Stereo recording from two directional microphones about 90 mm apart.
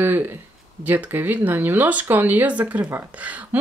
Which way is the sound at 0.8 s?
20° right (ahead or behind).